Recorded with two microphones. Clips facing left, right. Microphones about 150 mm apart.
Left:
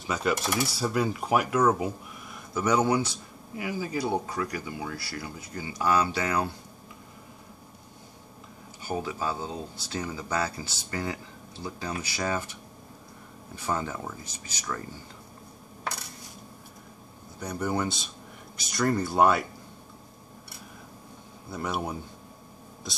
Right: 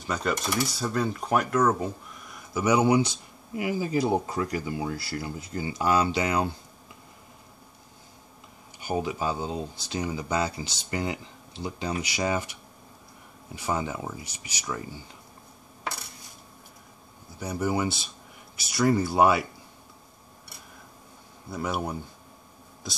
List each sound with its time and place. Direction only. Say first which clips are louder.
0.0 s speech: left 1 dB; 5° left (ahead or behind)
2.6 s speech: right 3 dB; 10° right (ahead or behind)
8.8 s speech: right 3 dB; 15° right (ahead or behind)
13.7 s speech: right 1 dB; 10° right (ahead or behind)
17.4 s speech: right 2 dB; 5° right (ahead or behind)
21.5 s speech: right 1 dB; centre (ahead or behind)